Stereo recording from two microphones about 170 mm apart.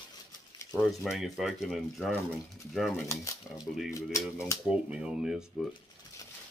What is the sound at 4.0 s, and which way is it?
Speech, 20° left (ahead or behind).